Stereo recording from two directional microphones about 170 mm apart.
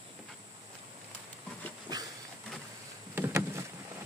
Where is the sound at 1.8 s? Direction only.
20° right (ahead or behind).